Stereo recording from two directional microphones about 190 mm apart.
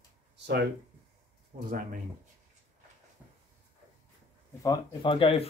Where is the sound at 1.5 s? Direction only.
45° right (ahead or behind).